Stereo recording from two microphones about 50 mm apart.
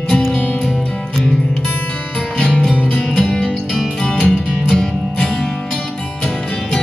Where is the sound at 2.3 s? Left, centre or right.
Left.